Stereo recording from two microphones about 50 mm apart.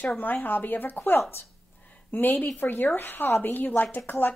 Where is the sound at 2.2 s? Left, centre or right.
Left.